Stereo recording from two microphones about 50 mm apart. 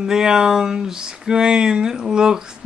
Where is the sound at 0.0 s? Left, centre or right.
Centre.